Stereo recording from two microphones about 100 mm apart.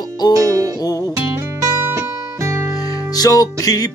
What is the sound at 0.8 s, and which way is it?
Music, 40° left (ahead or behind).